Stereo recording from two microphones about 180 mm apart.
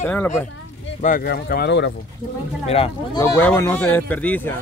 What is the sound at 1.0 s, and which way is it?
Speech, 55° left (ahead or behind).